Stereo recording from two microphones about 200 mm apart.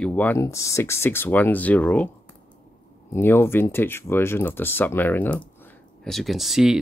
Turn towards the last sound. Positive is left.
turn(degrees=0)  # may be behind; listen again after turning